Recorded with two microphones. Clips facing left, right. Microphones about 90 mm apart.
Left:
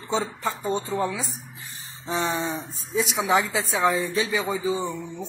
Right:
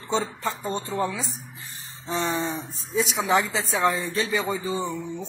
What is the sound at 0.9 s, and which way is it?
Speech, centre (ahead or behind).